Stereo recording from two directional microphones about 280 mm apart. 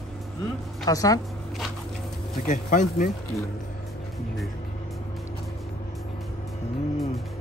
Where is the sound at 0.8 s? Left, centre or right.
Centre.